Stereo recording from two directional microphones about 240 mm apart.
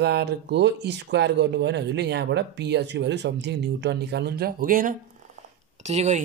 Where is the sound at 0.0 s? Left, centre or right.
Right.